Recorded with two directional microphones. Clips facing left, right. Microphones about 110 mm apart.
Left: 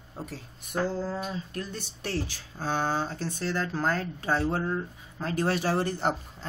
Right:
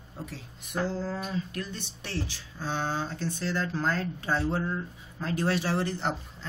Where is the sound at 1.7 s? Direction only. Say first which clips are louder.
Left 3 dB; 45° left (ahead or behind).